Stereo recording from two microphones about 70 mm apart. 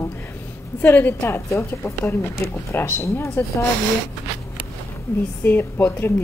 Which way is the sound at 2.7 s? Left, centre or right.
Left.